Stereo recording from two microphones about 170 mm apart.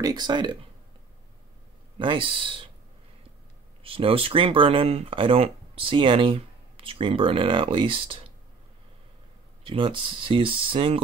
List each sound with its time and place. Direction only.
0.0 s speech: 25° right (ahead or behind)
2.0 s speech: 30° right (ahead or behind)
3.8 s speech: 35° right (ahead or behind)
9.7 s speech: 30° right (ahead or behind)